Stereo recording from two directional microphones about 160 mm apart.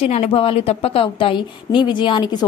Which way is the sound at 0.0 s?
40° left (ahead or behind).